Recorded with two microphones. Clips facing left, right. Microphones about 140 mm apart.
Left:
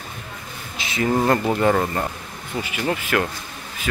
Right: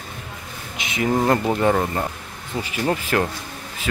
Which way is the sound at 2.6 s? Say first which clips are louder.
Right 2 dB; 35° right (ahead or behind).